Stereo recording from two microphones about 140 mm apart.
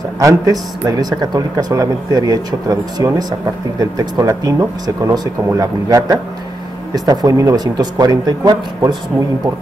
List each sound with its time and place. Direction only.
0.2 s a man's voice: 25° right (ahead or behind)